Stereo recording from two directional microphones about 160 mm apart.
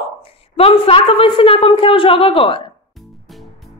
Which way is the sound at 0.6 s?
35° left (ahead or behind).